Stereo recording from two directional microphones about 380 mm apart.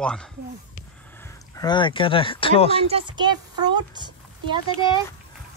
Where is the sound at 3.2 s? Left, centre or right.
Centre.